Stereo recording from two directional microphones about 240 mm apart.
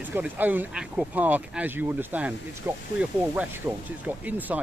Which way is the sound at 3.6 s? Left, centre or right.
Centre.